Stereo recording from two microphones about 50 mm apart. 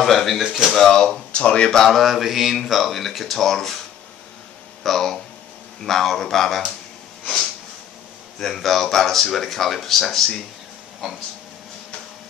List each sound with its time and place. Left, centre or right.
0.0 s a sound: centre
0.4 s speech: centre
0.8 s speech: centre
1.8 s speech: centre
4.8 s speech: centre
8.4 s speech: centre